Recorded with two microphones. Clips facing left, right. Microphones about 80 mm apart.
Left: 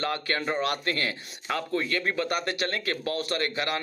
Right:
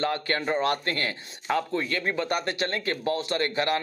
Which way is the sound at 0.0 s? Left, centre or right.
Right.